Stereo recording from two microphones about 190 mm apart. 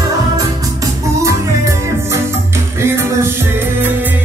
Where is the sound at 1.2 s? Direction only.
15° right (ahead or behind).